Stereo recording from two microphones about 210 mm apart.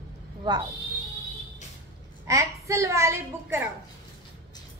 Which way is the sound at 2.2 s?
15° right (ahead or behind).